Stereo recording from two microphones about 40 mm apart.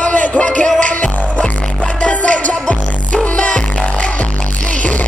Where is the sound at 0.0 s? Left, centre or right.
Left.